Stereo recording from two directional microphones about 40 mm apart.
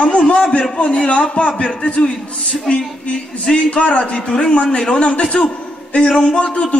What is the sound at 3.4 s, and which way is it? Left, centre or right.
A man's voice, left.